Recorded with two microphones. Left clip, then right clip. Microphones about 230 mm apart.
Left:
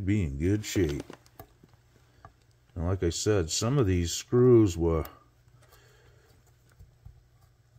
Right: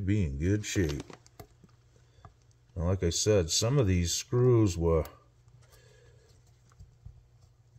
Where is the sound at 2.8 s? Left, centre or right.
Left.